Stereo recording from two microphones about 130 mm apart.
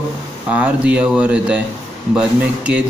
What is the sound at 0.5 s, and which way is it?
Speech, 10° right (ahead or behind).